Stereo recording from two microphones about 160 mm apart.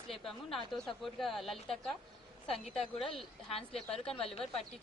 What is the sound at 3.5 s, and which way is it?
Speech, 35° left (ahead or behind).